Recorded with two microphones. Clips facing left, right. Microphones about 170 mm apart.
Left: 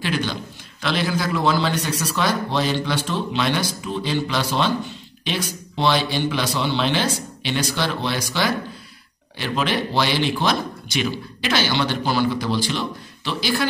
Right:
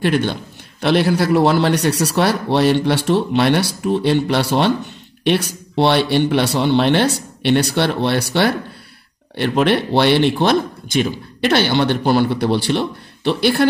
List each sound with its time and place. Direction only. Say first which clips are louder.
0.0 s a man's voice: right 7 dB; 55° right (ahead or behind)